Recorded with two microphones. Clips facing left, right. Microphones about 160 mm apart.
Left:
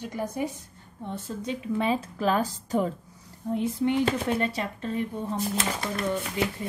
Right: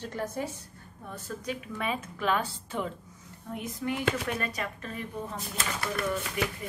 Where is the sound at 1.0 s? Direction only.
25° left (ahead or behind).